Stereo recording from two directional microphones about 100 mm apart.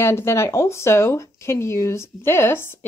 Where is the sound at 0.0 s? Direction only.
25° left (ahead or behind).